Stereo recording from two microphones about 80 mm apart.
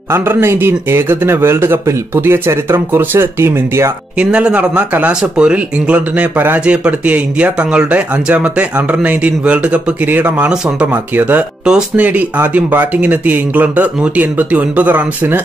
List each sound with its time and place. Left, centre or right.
0.1 s a man's voice: right
4.2 s speech: centre
11.1 s speech: right